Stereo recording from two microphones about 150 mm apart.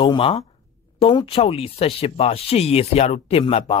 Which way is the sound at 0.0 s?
35° left (ahead or behind).